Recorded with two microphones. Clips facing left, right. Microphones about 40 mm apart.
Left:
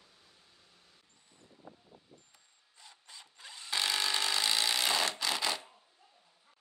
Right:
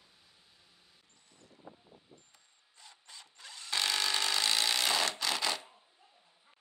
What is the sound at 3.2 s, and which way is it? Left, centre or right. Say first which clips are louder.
Tools: even; centre.